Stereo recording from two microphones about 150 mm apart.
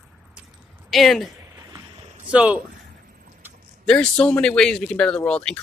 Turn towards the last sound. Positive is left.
turn(degrees=5)  # may be behind; listen again after turning